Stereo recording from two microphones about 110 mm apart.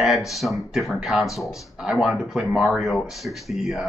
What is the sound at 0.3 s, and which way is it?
Speech, centre (ahead or behind).